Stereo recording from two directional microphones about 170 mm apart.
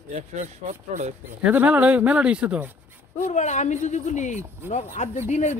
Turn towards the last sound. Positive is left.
turn(degrees=40)  # may be behind; listen again after turning